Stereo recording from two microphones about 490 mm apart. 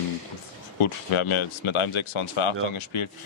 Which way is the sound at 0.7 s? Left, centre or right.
Left.